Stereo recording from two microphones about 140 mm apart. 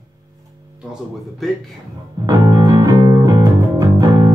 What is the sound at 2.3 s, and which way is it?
Music, 30° right (ahead or behind).